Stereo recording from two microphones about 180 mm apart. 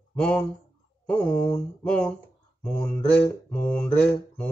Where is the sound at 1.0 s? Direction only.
5° left (ahead or behind).